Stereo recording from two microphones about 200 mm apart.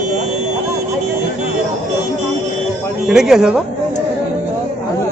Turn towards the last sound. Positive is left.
turn(degrees=-5)  # may be behind; listen again after turning